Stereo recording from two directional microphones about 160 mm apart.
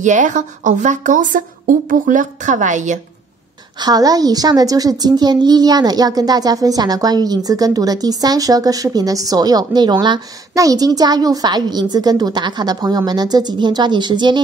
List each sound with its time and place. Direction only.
0.0 s a woman's voice: 50° right (ahead or behind)
3.8 s a woman's voice: 25° right (ahead or behind)